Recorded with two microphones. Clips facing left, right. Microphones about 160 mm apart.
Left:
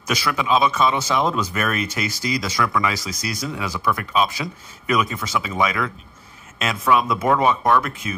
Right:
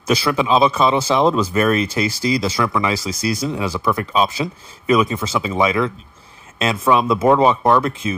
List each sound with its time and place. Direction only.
0.0 s speech: 30° right (ahead or behind)